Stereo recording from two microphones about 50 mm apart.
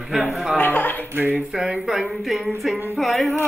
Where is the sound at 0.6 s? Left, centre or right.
Left.